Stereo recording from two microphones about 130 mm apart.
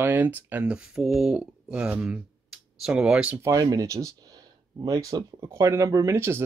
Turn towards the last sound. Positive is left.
turn(degrees=-20)  # may be behind; listen again after turning